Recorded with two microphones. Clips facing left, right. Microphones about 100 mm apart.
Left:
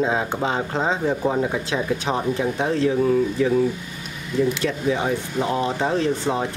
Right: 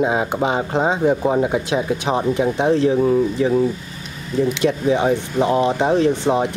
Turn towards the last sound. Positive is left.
turn(degrees=-20)  # may be behind; listen again after turning